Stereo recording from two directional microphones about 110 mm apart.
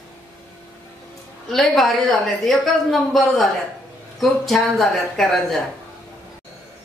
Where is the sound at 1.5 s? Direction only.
Centre (ahead or behind).